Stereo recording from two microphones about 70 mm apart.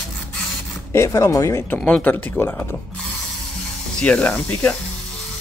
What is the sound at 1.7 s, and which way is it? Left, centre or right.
Speech, left.